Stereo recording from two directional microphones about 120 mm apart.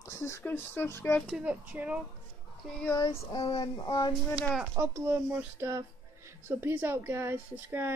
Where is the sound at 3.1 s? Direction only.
40° left (ahead or behind).